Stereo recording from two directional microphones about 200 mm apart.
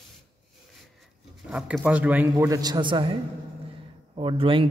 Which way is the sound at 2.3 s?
20° right (ahead or behind).